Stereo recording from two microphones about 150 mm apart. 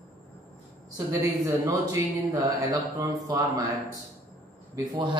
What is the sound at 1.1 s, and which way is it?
Speech, 20° right (ahead or behind).